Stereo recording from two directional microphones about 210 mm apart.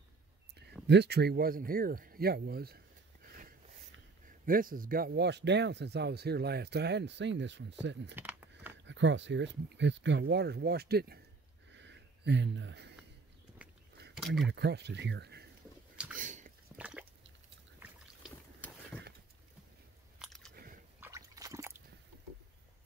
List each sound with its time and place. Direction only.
0.8 s speech: 55° right (ahead or behind)
3.3 s a sound: 45° right (ahead or behind)
4.5 s speech: 40° right (ahead or behind)
8.2 s a sound: 10° right (ahead or behind)
8.8 s speech: 60° right (ahead or behind)
11.7 s a sound: 55° right (ahead or behind)
14.2 s speech: centre (ahead or behind)
14.5 s speech: 55° right (ahead or behind)
16.2 s biting: 40° right (ahead or behind)
16.7 s drip: 5° right (ahead or behind)
20.2 s biting: centre (ahead or behind)
20.5 s squish: 40° right (ahead or behind)
21.0 s a sound: 15° right (ahead or behind)